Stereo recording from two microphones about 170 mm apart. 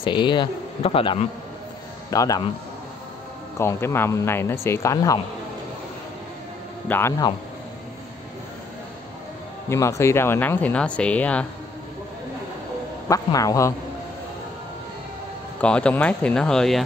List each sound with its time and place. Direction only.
0.0 s a man's voice: 25° left (ahead or behind)
2.0 s a man's voice: 20° left (ahead or behind)
3.5 s speech: 15° left (ahead or behind)
6.9 s speech: 15° left (ahead or behind)
9.7 s speech: 15° left (ahead or behind)
13.1 s a man's voice: 20° left (ahead or behind)
15.6 s speech: 5° left (ahead or behind)